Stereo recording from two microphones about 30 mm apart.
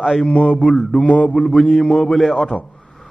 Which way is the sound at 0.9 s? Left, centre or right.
Left.